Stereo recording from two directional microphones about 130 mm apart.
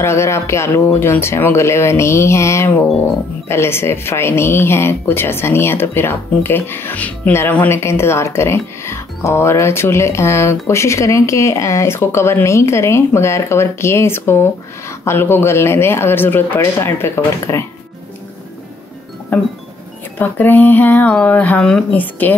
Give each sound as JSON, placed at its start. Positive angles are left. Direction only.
{"t": 0.0, "sound": "a woman's voice", "side_deg": 20}
{"t": 19.3, "sound": "speech", "side_deg": 15}